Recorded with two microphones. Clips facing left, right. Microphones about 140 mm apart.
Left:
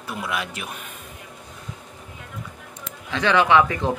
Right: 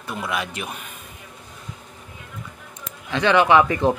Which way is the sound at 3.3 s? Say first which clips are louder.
Right 1 dB; 10° right (ahead or behind).